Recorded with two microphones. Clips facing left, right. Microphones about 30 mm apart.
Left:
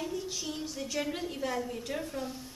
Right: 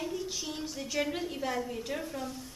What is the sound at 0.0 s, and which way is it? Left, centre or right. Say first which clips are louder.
A woman's voice: even; centre.